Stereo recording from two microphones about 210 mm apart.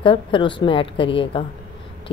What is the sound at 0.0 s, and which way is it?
A woman's voice, 25° left (ahead or behind).